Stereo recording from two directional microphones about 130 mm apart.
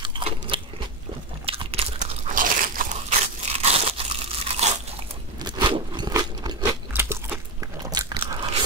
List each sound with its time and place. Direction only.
0.0 s crunch: 40° right (ahead or behind)
2.0 s crunch: 80° right
3.4 s crunch: 50° right (ahead or behind)
5.4 s a sound: 35° right (ahead or behind)
6.6 s crunch: 20° right (ahead or behind)
7.9 s biting: 35° right (ahead or behind)